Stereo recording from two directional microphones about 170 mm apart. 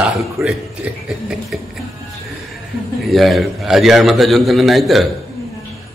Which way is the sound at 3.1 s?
Centre (ahead or behind).